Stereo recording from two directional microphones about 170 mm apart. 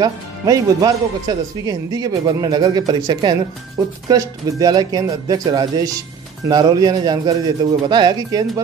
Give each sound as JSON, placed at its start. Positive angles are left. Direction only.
{"t": 0.0, "sound": "speech", "side_deg": -20}